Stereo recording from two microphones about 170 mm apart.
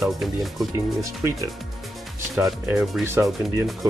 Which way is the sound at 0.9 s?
20° right (ahead or behind).